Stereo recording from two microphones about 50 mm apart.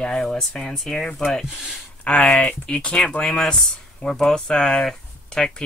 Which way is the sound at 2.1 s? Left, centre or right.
Left.